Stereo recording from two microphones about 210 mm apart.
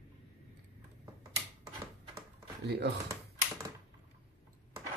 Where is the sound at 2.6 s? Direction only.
50° right (ahead or behind).